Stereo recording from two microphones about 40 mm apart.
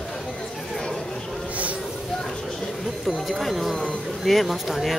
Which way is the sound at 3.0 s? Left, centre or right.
Centre.